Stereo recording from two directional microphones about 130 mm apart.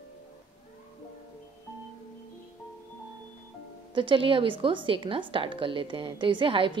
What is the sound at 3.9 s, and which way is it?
A woman's voice, 40° right (ahead or behind).